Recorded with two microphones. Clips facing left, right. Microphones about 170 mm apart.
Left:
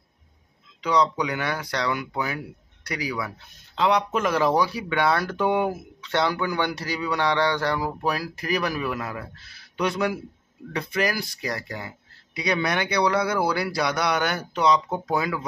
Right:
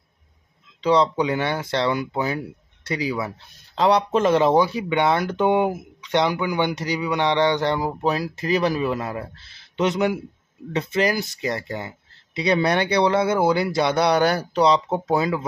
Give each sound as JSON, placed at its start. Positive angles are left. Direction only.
{"t": 0.7, "sound": "speech", "side_deg": -30}